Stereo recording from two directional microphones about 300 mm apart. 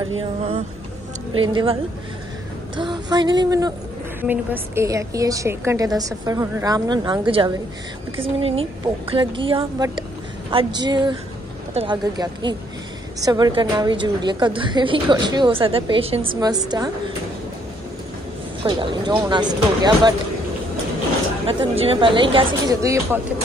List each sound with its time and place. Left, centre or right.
0.2 s a woman's voice: centre
18.6 s a woman's voice: centre
21.5 s a woman's voice: centre